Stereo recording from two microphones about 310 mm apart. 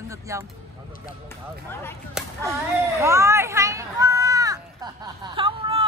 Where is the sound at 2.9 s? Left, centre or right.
Centre.